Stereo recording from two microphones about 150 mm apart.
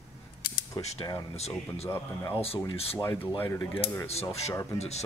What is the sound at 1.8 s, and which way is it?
Speech, 15° left (ahead or behind).